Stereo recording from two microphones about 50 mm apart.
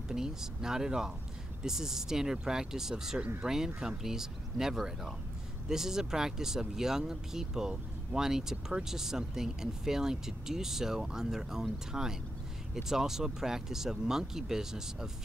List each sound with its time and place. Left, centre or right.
0.1 s speech: centre